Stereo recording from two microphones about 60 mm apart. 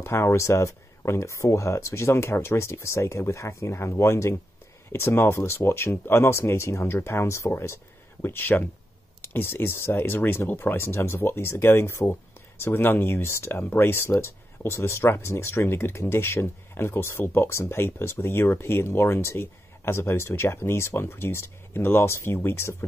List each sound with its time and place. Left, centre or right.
0.0 s speech: left
13.6 s speech: left